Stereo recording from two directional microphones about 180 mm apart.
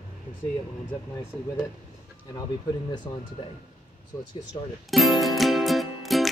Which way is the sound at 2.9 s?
25° left (ahead or behind).